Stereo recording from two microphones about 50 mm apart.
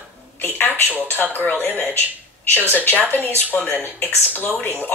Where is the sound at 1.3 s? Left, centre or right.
Left.